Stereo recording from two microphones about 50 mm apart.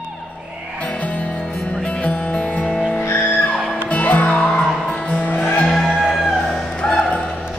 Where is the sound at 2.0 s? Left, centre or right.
Left.